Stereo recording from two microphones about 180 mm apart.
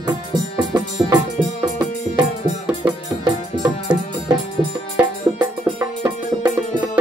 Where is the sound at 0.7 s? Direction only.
20° right (ahead or behind).